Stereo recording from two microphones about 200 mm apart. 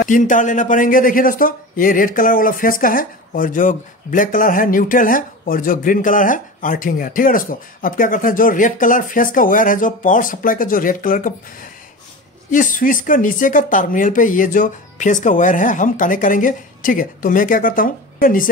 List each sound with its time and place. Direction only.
0.0 s speech: 40° left (ahead or behind)
12.4 s speech: 40° left (ahead or behind)